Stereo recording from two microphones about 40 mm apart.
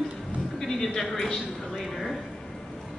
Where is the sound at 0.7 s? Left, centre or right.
Centre.